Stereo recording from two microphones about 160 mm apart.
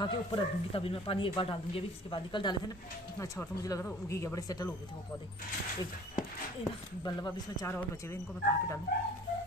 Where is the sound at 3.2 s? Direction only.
20° left (ahead or behind).